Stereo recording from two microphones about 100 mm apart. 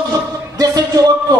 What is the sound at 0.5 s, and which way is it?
Music, 35° right (ahead or behind).